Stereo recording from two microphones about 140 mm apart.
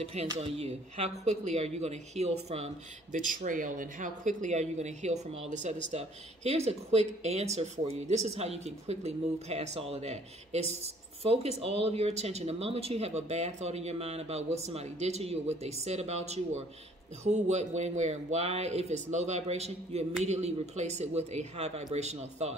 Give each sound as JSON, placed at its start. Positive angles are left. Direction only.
{"t": 0.0, "sound": "speech", "side_deg": -45}